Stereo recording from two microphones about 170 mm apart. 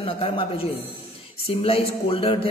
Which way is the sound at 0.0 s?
35° left (ahead or behind).